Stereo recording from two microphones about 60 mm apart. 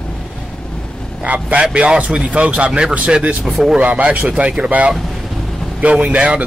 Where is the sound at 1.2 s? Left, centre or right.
Right.